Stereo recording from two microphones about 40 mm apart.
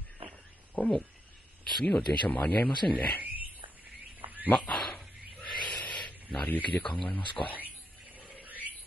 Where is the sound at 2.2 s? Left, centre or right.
Left.